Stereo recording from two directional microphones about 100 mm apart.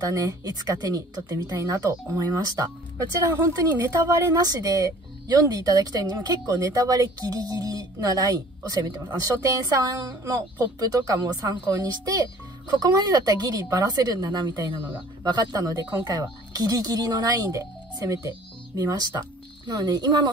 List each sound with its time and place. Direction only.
0.0 s a woman's voice: 40° right (ahead or behind)